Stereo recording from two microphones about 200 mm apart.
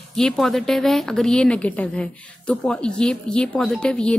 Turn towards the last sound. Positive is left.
turn(degrees=5)  # may be behind; listen again after turning